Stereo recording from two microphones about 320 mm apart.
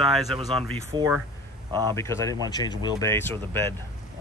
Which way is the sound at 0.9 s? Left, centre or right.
Centre.